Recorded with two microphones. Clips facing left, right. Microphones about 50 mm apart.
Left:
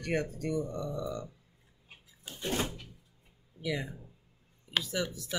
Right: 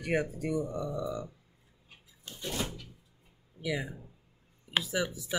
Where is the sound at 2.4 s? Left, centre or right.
Left.